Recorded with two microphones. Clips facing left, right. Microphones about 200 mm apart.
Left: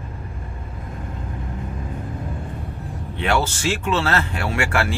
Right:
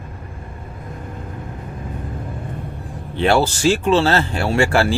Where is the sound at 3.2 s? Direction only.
35° right (ahead or behind).